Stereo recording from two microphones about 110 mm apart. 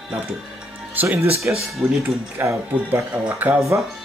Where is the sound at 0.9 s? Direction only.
20° right (ahead or behind).